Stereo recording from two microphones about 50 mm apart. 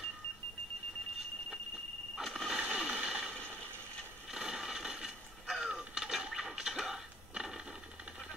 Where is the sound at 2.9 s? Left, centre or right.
Centre.